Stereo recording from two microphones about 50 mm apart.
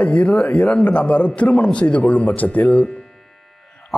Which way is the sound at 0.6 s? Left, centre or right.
Centre.